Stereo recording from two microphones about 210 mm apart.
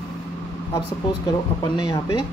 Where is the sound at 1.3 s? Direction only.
20° left (ahead or behind).